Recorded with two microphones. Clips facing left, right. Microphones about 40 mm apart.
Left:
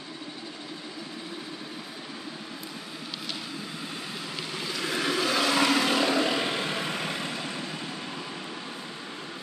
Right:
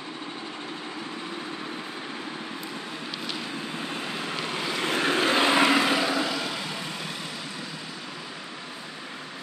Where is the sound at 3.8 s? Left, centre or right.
Right; by 6.1 s centre.